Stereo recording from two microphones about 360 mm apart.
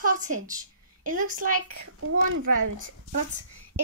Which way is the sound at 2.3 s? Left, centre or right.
Right.